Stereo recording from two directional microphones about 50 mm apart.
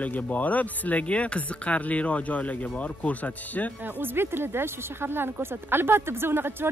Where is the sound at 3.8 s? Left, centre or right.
Right.